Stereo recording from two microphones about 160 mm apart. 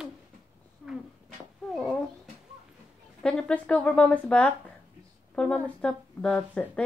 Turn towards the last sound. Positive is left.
turn(degrees=5)  # may be behind; listen again after turning